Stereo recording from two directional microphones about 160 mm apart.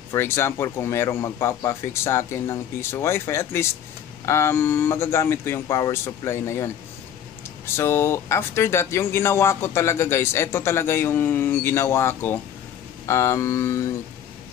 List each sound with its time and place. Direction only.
0.1 s speech: 15° left (ahead or behind)